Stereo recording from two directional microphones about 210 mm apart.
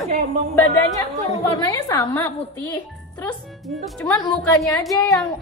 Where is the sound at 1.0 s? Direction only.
15° left (ahead or behind).